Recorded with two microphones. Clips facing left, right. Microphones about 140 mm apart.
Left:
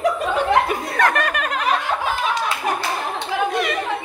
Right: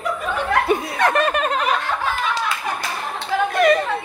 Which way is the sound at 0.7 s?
25° right (ahead or behind).